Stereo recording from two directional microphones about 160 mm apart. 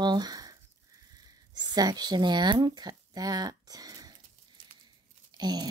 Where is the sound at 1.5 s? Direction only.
25° right (ahead or behind).